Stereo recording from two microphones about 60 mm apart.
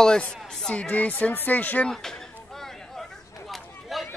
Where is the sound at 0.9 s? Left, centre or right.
Left.